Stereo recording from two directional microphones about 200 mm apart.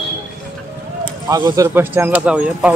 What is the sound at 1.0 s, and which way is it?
Speech, 20° right (ahead or behind).